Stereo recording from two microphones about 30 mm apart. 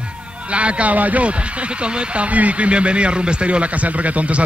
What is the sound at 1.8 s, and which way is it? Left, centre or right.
Speech, right.